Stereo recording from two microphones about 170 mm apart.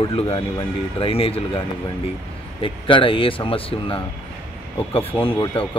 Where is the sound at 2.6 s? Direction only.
30° left (ahead or behind).